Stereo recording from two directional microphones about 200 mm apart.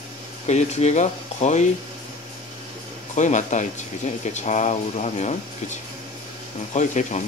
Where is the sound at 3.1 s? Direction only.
35° left (ahead or behind).